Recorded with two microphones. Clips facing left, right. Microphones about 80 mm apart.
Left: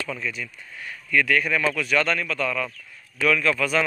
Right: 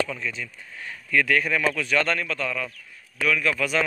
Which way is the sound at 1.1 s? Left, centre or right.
Right.